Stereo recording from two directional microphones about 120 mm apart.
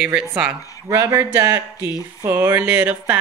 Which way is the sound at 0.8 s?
20° right (ahead or behind).